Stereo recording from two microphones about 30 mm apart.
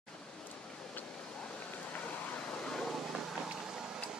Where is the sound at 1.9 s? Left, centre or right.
Left.